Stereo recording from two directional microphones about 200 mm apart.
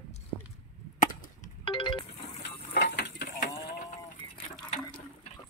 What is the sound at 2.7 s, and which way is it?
Livestock, 55° left (ahead or behind).